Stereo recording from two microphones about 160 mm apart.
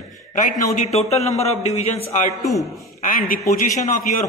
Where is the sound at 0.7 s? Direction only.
45° left (ahead or behind).